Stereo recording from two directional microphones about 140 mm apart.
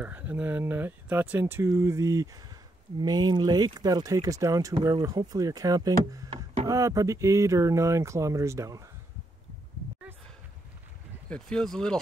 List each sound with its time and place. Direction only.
0.0 s speech: 10° right (ahead or behind)
6.3 s a sound: 45° right (ahead or behind)
6.7 s speech: 25° right (ahead or behind)
11.2 s speech: 5° left (ahead or behind)